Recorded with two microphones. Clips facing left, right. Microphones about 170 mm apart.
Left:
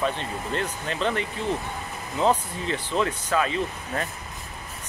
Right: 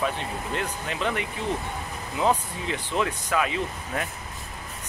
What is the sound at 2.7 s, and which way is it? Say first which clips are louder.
Speech: left 1 dB; 10° right (ahead or behind).